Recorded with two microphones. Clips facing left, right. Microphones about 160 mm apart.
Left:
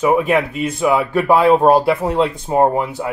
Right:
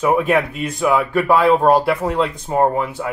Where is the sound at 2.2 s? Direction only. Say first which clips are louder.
Left 3 dB; 15° left (ahead or behind).